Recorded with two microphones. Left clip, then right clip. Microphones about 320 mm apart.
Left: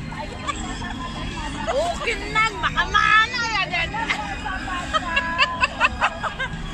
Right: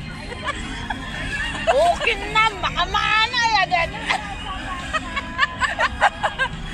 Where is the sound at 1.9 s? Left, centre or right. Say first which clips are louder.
Right 3 dB; centre.